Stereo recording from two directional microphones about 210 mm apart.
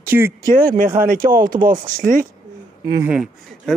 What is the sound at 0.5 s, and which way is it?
Speech, 40° right (ahead or behind).